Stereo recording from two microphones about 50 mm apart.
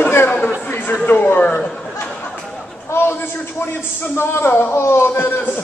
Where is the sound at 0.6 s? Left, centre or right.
Left.